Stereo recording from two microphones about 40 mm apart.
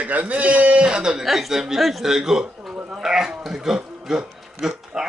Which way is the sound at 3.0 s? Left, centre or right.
Centre.